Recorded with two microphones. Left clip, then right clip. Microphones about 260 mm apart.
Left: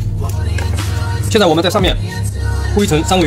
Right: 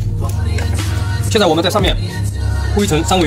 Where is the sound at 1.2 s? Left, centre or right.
Left.